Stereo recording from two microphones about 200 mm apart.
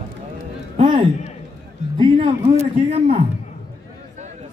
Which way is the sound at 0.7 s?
25° right (ahead or behind).